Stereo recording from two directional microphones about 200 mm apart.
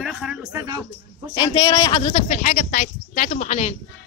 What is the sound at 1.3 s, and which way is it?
A man's voice, 25° left (ahead or behind).